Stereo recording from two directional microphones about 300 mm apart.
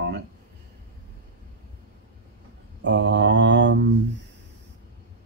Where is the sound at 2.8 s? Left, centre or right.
Right.